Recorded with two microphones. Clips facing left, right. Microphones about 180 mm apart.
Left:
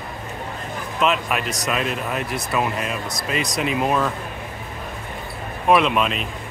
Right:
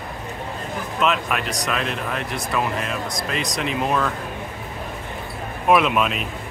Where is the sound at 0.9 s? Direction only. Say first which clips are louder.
Left 1 dB; centre (ahead or behind).